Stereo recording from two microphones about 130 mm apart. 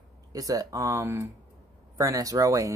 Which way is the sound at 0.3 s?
30° right (ahead or behind).